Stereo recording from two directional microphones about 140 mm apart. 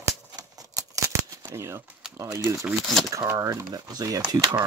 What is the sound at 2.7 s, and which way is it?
Speech, centre (ahead or behind).